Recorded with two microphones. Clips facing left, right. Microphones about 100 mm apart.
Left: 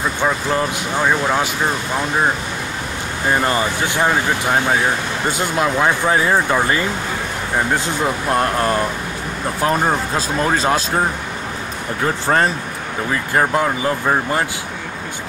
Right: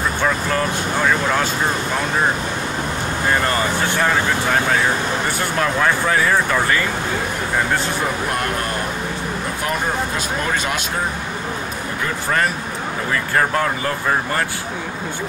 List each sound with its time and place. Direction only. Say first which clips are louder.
0.2 s speech: left 2 dB; 20° left (ahead or behind)
3.3 s speech: left 2 dB; 15° left (ahead or behind)
9.7 s speech: left 4 dB; 30° left (ahead or behind)
13.3 s speech: left 2 dB; 15° left (ahead or behind)